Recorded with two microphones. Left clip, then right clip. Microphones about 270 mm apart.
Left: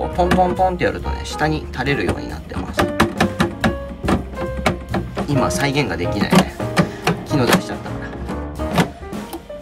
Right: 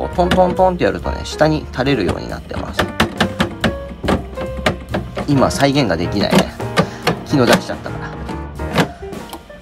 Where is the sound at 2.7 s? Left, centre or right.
Centre.